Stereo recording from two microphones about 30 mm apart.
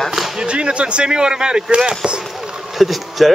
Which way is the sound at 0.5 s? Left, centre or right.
Right.